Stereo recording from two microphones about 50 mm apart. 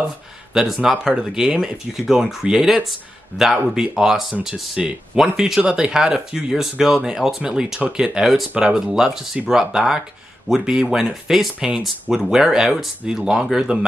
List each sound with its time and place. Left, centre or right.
0.5 s speech: centre
8.2 s speech: centre